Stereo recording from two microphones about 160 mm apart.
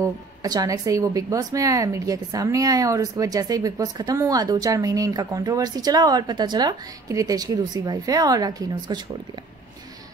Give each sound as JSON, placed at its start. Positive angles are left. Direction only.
{"t": 0.0, "sound": "a woman's voice", "side_deg": -25}